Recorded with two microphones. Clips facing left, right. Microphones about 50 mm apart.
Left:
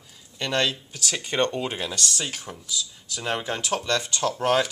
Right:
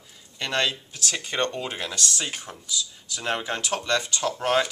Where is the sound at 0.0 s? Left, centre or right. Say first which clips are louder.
Left 1 dB; centre.